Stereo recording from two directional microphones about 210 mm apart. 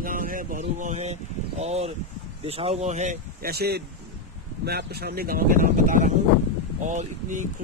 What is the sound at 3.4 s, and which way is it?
Speech, 50° right (ahead or behind).